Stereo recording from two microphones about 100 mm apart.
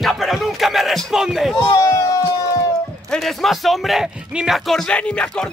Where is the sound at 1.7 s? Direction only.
30° left (ahead or behind).